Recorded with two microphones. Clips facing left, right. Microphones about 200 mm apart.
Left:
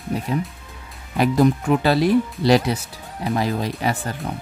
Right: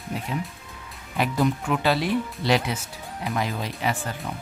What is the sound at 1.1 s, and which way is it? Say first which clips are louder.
Speech: left 6 dB; 40° left (ahead or behind).